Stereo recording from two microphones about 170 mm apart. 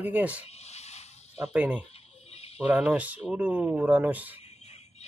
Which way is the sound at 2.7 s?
10° right (ahead or behind).